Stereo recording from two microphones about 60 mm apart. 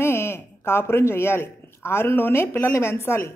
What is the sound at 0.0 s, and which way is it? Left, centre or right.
Speech, left.